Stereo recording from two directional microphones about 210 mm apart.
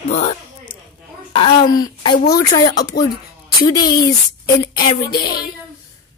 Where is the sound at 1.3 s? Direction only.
20° left (ahead or behind).